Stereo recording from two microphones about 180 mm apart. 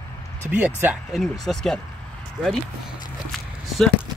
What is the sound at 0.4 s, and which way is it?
Speech, 10° right (ahead or behind).